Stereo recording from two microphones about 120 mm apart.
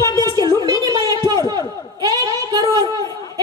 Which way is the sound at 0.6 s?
35° right (ahead or behind).